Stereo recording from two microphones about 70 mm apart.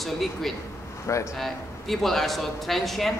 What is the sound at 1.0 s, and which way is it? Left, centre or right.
Speech, left.